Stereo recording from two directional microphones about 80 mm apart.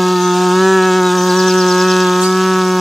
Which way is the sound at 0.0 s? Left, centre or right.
Centre.